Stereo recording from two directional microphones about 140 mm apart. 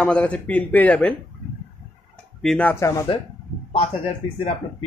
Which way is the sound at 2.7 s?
20° left (ahead or behind).